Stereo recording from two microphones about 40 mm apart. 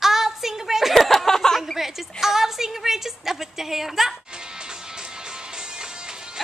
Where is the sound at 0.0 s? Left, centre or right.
Centre.